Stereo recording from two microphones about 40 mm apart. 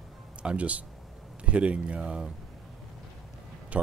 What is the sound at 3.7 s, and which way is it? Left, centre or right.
Music, right.